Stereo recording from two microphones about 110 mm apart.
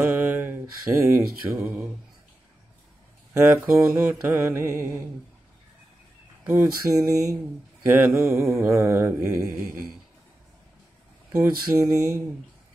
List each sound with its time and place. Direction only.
0.0 s mantra: 15° right (ahead or behind)
3.3 s mantra: 25° right (ahead or behind)
6.4 s speech: 20° right (ahead or behind)
6.9 s a sound: 30° right (ahead or behind)
7.8 s mantra: 20° right (ahead or behind)
11.3 s mantra: 25° right (ahead or behind)